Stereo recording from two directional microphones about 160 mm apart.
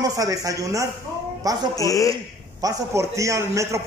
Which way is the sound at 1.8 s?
20° left (ahead or behind).